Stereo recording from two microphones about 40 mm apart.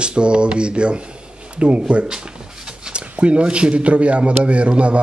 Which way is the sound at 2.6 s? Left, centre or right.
Centre.